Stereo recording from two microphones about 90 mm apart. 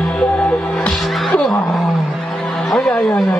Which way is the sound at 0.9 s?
5° left (ahead or behind).